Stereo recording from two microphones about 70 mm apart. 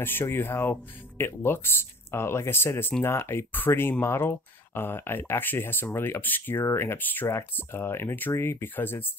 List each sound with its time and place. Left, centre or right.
0.0 s speech: left